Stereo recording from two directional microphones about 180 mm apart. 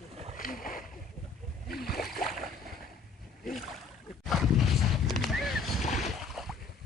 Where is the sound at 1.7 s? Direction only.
60° left (ahead or behind).